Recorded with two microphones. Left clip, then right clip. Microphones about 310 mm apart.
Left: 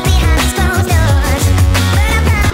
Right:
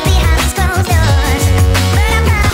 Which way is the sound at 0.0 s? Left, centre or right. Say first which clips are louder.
Even; centre.